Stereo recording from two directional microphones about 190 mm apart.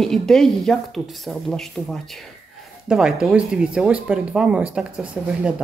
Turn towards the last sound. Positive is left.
turn(degrees=-5)  # may be behind; listen again after turning